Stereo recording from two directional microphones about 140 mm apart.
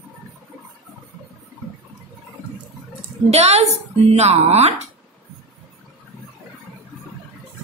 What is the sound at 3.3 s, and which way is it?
A woman's voice, 50° right (ahead or behind).